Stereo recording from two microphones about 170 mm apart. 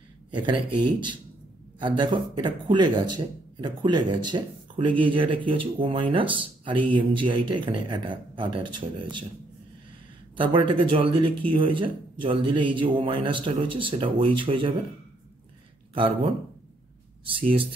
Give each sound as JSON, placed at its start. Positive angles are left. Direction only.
{"t": 0.3, "sound": "speech", "side_deg": -30}
{"t": 1.8, "sound": "a man's voice", "side_deg": -25}
{"t": 10.3, "sound": "a man's voice", "side_deg": -30}
{"t": 15.9, "sound": "speech", "side_deg": -30}